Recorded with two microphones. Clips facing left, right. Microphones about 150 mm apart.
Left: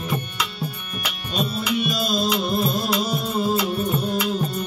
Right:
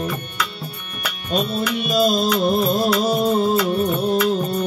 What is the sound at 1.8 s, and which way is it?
Music, 50° right (ahead or behind).